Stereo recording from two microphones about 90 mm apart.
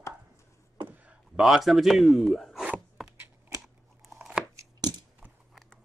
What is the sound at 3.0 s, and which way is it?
Computer keyboard, centre (ahead or behind).